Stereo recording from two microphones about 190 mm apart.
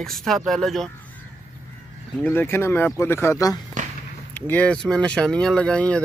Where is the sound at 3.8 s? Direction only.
40° right (ahead or behind).